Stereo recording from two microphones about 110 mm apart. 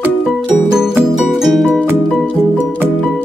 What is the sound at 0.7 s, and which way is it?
Music, 5° right (ahead or behind).